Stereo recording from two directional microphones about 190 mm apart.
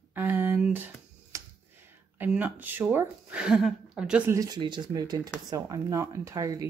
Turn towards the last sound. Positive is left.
turn(degrees=-15)  # may be behind; listen again after turning